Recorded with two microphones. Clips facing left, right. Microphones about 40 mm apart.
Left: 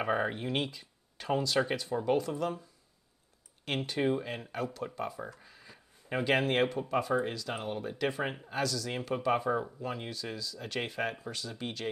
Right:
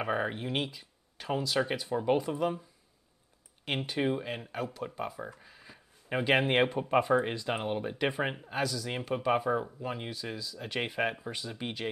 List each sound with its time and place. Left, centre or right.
0.0 s speech: centre
3.6 s speech: centre